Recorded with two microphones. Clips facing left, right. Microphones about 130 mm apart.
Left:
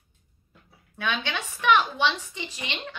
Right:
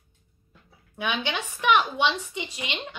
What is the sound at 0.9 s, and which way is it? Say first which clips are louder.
Speech: right 1 dB; 15° right (ahead or behind).